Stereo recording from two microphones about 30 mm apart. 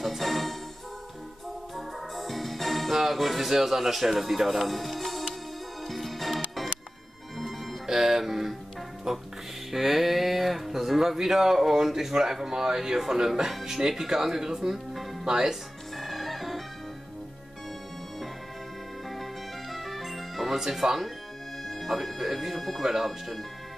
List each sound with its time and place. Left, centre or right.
0.0 s music: centre
1.8 s music: centre
7.8 s music: centre
9.1 s speech: centre
16.0 s music: centre
19.7 s music: centre
20.7 s speech: centre